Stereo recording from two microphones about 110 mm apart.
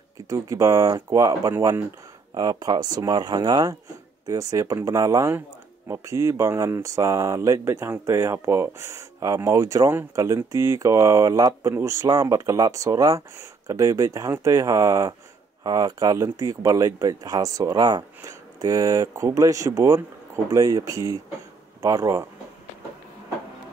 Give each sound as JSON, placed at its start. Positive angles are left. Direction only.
{"t": 0.3, "sound": "speech", "side_deg": -30}